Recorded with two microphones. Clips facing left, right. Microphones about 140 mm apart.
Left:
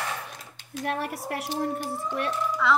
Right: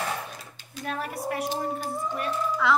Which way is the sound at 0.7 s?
75° left (ahead or behind).